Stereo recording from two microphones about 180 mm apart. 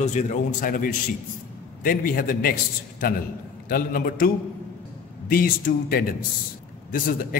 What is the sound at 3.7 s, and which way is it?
A man's voice, 55° left (ahead or behind).